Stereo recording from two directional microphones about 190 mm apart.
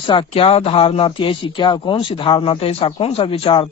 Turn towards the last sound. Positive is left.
turn(degrees=25)  # may be behind; listen again after turning